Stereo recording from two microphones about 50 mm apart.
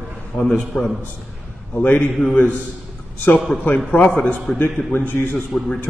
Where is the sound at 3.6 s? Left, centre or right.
Left.